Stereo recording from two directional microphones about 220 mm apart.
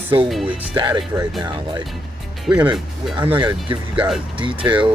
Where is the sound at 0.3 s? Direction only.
Centre (ahead or behind).